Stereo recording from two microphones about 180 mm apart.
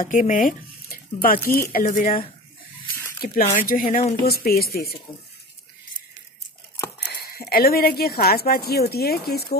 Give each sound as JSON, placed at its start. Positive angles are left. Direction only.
{"t": 0.0, "sound": "speech", "side_deg": 45}
{"t": 3.4, "sound": "speech", "side_deg": 50}
{"t": 7.1, "sound": "speech", "side_deg": 60}